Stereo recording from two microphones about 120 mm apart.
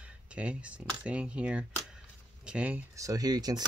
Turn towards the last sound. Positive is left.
turn(degrees=-35)  # may be behind; listen again after turning